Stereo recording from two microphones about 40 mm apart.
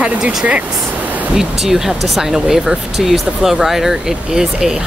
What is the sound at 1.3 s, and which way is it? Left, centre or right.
Speech, centre.